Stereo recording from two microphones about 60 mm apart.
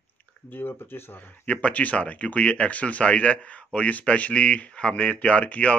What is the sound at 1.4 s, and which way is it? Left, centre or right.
Speech, left.